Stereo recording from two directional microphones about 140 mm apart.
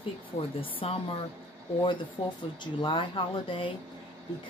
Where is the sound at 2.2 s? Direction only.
35° left (ahead or behind).